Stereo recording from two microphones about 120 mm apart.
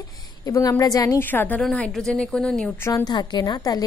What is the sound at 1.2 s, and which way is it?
Speech, 15° left (ahead or behind).